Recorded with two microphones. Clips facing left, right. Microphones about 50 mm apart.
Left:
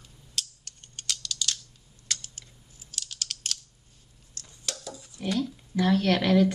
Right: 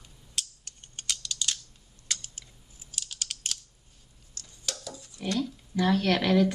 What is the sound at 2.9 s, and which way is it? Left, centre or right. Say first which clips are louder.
Computer keyboard: left 1 dB; centre.